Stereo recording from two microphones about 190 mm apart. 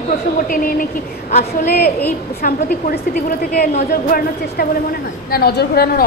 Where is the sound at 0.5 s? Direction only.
45° left (ahead or behind).